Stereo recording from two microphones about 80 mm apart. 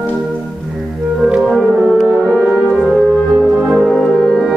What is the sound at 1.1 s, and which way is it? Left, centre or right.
Music, centre.